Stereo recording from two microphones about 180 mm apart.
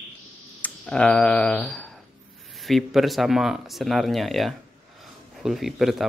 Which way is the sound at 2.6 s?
Centre (ahead or behind).